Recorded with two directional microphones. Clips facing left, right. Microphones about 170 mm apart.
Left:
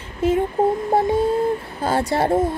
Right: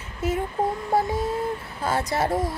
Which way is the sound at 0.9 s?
25° left (ahead or behind).